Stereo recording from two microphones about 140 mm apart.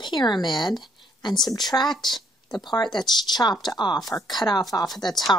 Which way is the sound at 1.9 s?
Centre (ahead or behind).